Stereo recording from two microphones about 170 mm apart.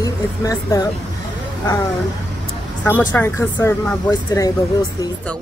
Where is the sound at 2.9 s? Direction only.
10° left (ahead or behind).